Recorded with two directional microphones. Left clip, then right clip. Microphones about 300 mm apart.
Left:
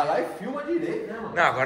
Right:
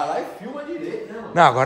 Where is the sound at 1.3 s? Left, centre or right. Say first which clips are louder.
Right 7 dB; centre.